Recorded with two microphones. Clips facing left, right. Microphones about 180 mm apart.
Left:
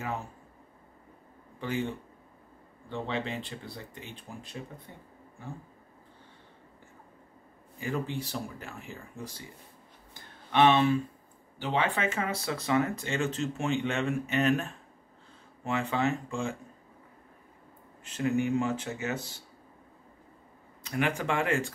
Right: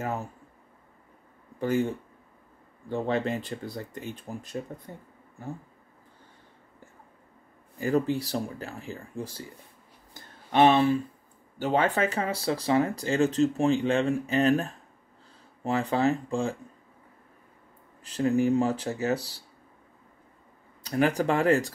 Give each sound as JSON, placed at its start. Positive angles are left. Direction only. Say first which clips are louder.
{"t": 1.6, "sound": "speech", "louder": "right 6 dB", "side_deg": -45}
{"t": 7.8, "sound": "speech", "louder": "right 8 dB", "side_deg": -40}
{"t": 10.5, "sound": "speech", "louder": "right 3 dB", "side_deg": -35}
{"t": 18.0, "sound": "speech", "louder": "right 4 dB", "side_deg": -35}
{"t": 20.8, "sound": "speech", "louder": "right 6 dB", "side_deg": -35}